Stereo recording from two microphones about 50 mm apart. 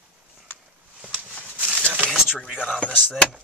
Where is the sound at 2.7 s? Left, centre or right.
Left.